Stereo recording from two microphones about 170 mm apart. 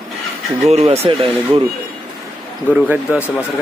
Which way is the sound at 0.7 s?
35° right (ahead or behind).